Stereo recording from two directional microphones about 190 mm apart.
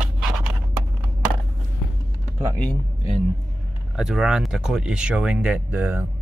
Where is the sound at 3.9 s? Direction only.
5° right (ahead or behind).